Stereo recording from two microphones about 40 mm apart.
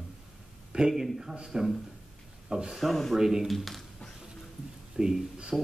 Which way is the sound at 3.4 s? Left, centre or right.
Centre.